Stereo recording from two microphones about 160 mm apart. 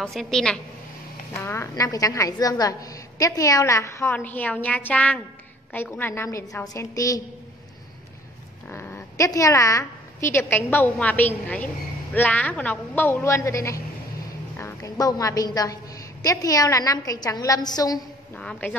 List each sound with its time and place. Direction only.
0.0 s a woman's voice: centre (ahead or behind)
1.3 s a woman's voice: 15° left (ahead or behind)
8.6 s a woman's voice: 15° left (ahead or behind)
18.3 s a woman's voice: 5° left (ahead or behind)